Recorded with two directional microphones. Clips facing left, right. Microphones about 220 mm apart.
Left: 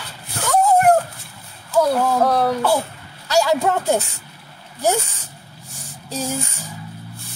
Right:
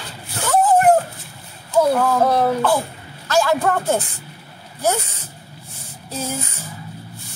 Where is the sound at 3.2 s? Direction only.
15° left (ahead or behind).